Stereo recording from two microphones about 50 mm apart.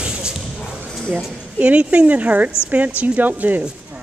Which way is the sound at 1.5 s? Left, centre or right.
Right.